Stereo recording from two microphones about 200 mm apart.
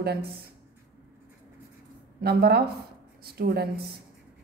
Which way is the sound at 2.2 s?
55° right (ahead or behind).